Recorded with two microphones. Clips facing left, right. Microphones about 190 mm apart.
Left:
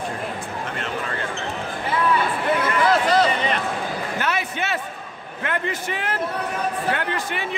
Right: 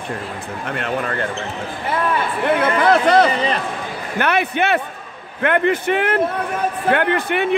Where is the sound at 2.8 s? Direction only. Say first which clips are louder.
Right 4 dB; 60° right (ahead or behind).